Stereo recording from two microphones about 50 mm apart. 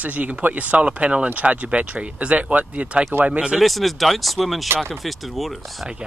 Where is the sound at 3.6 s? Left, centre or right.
Centre.